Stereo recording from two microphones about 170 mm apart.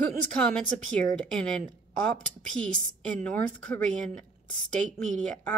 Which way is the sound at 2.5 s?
5° left (ahead or behind).